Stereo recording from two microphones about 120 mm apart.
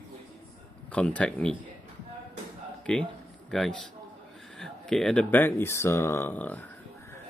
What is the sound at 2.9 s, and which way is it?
A man's voice, 5° left (ahead or behind).